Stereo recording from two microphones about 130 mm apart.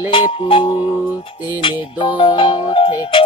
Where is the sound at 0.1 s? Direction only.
40° left (ahead or behind).